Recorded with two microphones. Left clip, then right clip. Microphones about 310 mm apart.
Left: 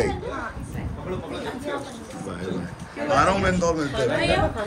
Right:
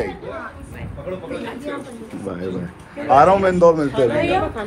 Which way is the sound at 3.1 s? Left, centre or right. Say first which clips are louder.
Right 8 dB; centre.